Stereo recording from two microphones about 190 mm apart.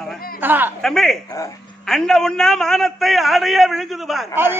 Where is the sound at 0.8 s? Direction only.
Centre (ahead or behind).